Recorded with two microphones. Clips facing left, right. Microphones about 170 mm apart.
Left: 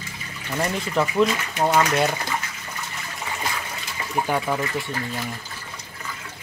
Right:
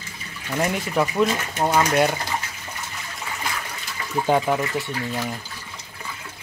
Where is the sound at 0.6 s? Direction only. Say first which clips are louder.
Right 1 dB; 10° right (ahead or behind).